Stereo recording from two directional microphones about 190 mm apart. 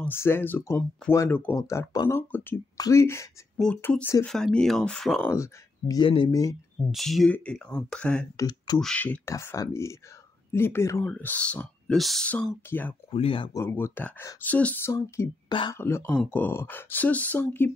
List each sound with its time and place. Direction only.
0.0 s speech: 10° left (ahead or behind)
5.3 s speech: 15° left (ahead or behind)
6.9 s speech: centre (ahead or behind)
8.4 s speech: 20° left (ahead or behind)
8.7 s speech: 5° left (ahead or behind)
13.1 s speech: 30° left (ahead or behind)
15.5 s speech: 25° left (ahead or behind)
15.8 s speech: 10° left (ahead or behind)